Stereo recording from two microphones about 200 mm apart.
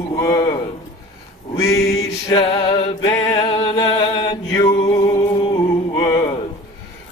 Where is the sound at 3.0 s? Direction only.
15° left (ahead or behind).